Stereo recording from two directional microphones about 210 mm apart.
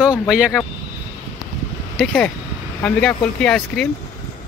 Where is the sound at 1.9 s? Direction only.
5° left (ahead or behind).